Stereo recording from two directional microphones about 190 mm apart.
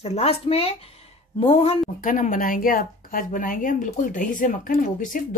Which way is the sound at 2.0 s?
45° left (ahead or behind).